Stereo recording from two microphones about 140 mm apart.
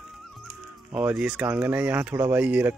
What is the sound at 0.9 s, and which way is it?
Speech, 10° right (ahead or behind).